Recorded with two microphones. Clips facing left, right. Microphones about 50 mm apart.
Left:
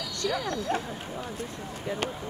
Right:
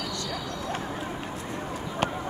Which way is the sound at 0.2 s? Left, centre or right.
Left.